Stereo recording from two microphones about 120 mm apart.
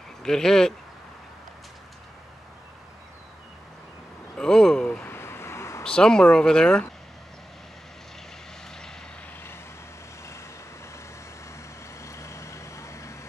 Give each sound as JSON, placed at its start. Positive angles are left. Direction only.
{"t": 0.2, "sound": "speech", "side_deg": 5}
{"t": 4.4, "sound": "a sound", "side_deg": 5}
{"t": 5.9, "sound": "speech", "side_deg": 5}
{"t": 12.0, "sound": "vehicle", "side_deg": 25}